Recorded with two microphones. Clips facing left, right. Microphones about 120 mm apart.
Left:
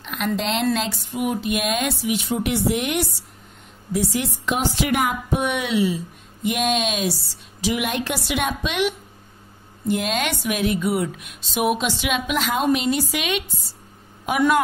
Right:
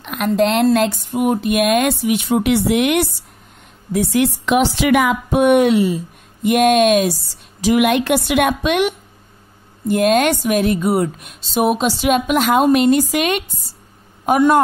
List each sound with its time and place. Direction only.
0.0 s a sound: 55° right (ahead or behind)
0.4 s speech: 55° right (ahead or behind); by 3.1 s 75° right (ahead or behind)
3.9 s a woman's voice: 60° right (ahead or behind); by 5.4 s 90° right
5.4 s a woman's voice: 50° right (ahead or behind)
7.8 s speech: 65° right (ahead or behind); by 13.4 s 45° right (ahead or behind)